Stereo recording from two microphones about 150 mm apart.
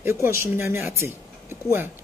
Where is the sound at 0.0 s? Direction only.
15° right (ahead or behind).